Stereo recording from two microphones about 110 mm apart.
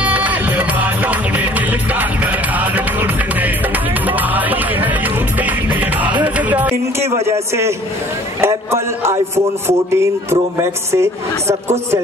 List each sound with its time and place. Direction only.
0.0 s music: 15° right (ahead or behind)
7.2 s speech: 25° right (ahead or behind)